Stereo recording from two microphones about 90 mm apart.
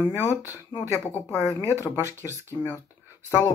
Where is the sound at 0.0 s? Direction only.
25° left (ahead or behind).